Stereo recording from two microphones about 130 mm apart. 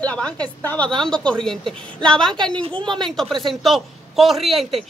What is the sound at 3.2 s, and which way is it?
A woman's voice, centre (ahead or behind).